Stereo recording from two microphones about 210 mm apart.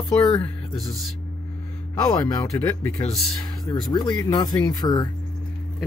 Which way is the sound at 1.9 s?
20° left (ahead or behind).